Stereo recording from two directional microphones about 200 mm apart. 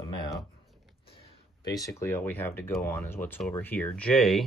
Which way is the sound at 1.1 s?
20° left (ahead or behind).